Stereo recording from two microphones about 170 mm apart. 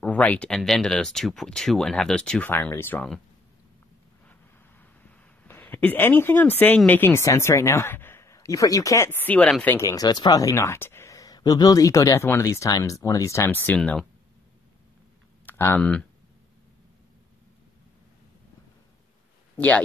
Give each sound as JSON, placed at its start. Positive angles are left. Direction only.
{"t": 0.0, "sound": "speech", "side_deg": 10}
{"t": 4.3, "sound": "a sound", "side_deg": 10}
{"t": 6.9, "sound": "speech", "side_deg": 15}
{"t": 15.4, "sound": "speech", "side_deg": 10}
{"t": 19.5, "sound": "speech", "side_deg": 10}